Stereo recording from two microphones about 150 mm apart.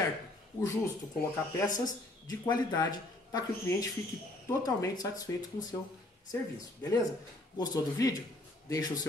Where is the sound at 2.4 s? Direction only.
25° left (ahead or behind).